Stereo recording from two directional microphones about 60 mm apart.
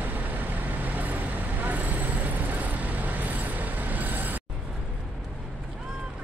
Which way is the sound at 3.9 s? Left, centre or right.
Right.